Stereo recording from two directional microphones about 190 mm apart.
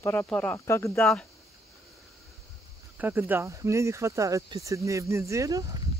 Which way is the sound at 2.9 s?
10° right (ahead or behind).